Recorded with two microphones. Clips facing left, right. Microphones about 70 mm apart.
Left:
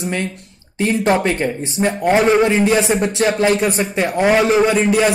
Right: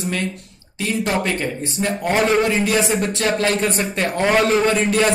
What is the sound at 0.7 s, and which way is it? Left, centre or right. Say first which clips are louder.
A man's voice: left 5 dB; left.